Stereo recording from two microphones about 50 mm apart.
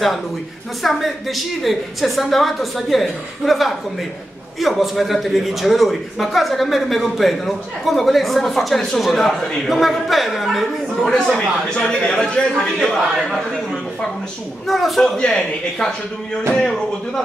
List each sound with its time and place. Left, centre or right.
0.8 s a man's voice: centre
12.8 s a man's voice: centre
14.7 s a man's voice: centre
15.0 s a man's voice: centre